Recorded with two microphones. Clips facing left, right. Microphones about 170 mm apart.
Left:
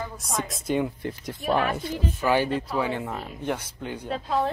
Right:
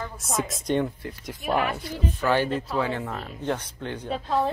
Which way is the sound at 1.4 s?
10° right (ahead or behind).